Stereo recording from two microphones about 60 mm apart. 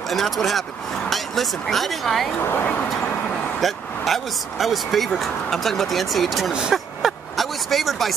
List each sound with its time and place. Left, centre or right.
0.1 s speech: centre
2.4 s speech: left
3.6 s speech: centre
6.5 s a sound: centre